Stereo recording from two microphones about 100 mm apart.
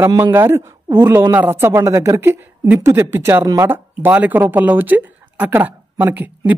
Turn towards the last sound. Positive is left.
turn(degrees=-20)  # may be behind; listen again after turning